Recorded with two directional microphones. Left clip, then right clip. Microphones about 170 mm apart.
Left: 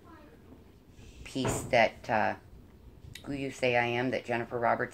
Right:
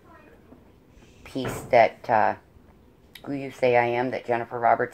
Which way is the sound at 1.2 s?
20° right (ahead or behind).